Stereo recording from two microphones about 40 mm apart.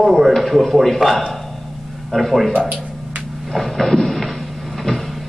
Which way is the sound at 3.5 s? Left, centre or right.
Centre.